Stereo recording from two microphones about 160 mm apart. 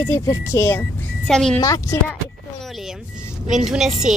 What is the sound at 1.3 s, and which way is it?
Speech, 5° left (ahead or behind).